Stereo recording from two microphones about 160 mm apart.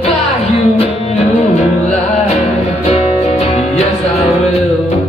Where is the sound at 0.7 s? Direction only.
40° left (ahead or behind).